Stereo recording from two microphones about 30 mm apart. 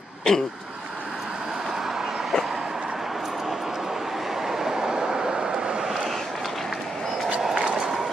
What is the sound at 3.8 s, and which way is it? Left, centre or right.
Vehicle, centre.